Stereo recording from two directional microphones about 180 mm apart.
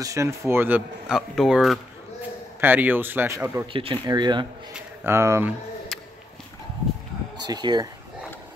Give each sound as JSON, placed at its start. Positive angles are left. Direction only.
{"t": 0.0, "sound": "speech", "side_deg": -15}
{"t": 2.6, "sound": "speech", "side_deg": -10}
{"t": 3.7, "sound": "speech", "side_deg": -30}
{"t": 5.0, "sound": "speech", "side_deg": -15}
{"t": 5.9, "sound": "a sound", "side_deg": 0}
{"t": 7.4, "sound": "speech", "side_deg": -25}